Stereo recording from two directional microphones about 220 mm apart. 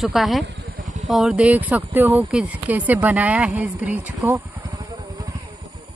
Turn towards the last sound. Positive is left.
turn(degrees=-15)  # may be behind; listen again after turning